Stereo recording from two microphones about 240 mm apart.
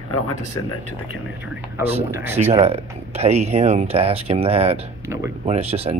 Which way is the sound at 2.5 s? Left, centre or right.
Right.